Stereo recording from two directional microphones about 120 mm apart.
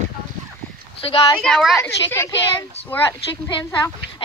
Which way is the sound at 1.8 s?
20° left (ahead or behind).